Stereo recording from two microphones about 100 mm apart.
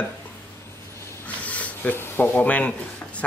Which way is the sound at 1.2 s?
15° left (ahead or behind).